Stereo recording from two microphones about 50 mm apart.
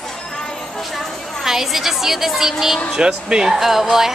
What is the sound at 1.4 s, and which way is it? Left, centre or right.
A woman's voice, centre.